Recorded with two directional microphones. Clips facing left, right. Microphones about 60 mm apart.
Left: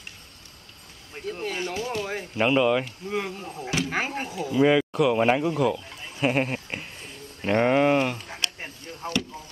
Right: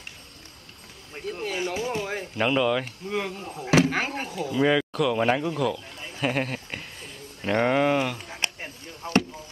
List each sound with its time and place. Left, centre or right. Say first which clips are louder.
1.1 s speech: even; centre
1.6 s speech: right 3 dB; centre
2.3 s speech: left 2 dB; centre
8.4 s a sound: right 1 dB; right
9.0 s speech: right 5 dB; centre